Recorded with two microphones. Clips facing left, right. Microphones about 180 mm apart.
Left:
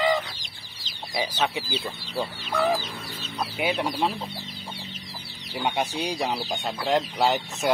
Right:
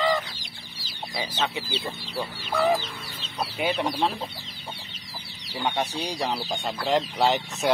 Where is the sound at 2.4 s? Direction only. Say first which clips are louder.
Right 2 dB; centre (ahead or behind).